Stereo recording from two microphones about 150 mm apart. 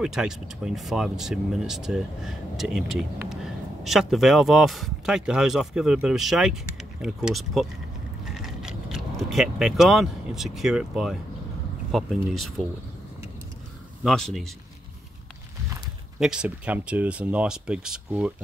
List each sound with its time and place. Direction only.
0.0 s speech: 5° right (ahead or behind)
14.0 s speech: centre (ahead or behind)
16.2 s speech: 5° right (ahead or behind)